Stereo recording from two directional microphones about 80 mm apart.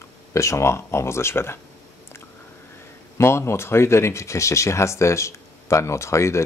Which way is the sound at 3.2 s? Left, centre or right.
Left.